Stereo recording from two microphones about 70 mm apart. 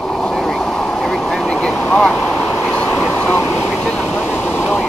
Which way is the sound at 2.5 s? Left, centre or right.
Centre.